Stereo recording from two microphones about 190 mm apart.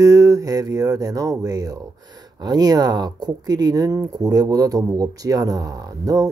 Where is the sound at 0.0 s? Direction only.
20° right (ahead or behind).